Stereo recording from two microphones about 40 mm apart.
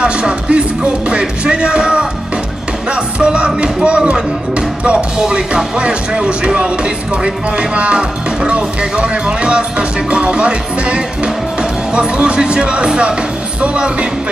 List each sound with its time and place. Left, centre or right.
0.0 s music: right
3.3 s music: right